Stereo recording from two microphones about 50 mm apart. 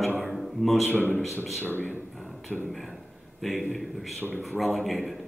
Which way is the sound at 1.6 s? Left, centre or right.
Left.